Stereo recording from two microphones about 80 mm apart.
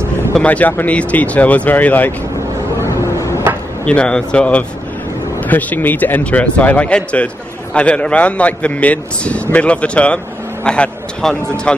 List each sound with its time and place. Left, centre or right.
0.5 s speech: left
2.8 s a sound: left
3.8 s a man's voice: centre